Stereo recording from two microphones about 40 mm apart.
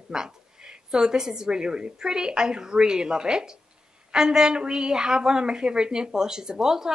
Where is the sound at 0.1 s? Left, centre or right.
Centre.